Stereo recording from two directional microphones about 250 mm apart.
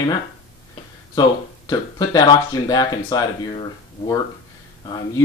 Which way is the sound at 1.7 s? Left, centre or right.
Centre.